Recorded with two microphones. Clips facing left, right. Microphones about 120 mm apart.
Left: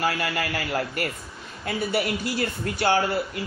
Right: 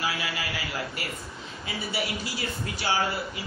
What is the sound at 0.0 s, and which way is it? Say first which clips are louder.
Speech: left 6 dB; 55° left (ahead or behind).